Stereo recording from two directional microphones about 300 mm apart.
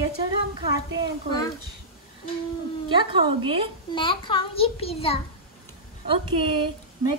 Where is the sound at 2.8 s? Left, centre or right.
Centre.